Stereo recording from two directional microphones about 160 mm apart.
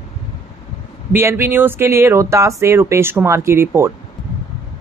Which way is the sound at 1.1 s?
15° right (ahead or behind).